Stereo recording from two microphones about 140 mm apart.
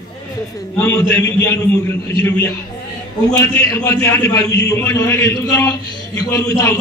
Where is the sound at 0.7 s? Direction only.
15° left (ahead or behind).